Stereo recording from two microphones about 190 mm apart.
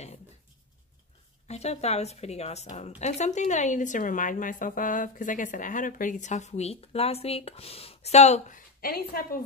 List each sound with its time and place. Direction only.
1.5 s speech: 35° left (ahead or behind)